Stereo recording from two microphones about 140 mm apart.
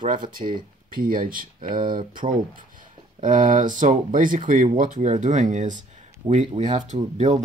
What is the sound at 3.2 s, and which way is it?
Speech, 70° right (ahead or behind).